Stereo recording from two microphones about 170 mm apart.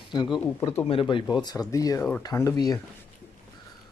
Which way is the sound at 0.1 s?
30° left (ahead or behind).